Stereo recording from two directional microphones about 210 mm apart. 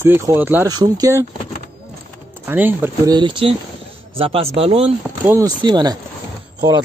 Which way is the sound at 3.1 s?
25° right (ahead or behind).